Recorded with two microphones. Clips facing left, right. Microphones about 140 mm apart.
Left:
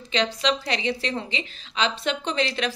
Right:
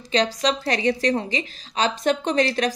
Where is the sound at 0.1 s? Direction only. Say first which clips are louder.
Right 3 dB; 40° right (ahead or behind).